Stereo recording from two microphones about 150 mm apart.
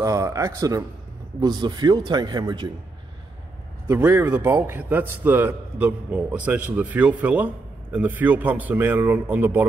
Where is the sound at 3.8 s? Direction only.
15° right (ahead or behind).